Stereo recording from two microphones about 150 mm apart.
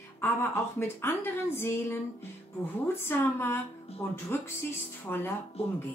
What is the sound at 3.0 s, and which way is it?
A woman's voice, 15° left (ahead or behind).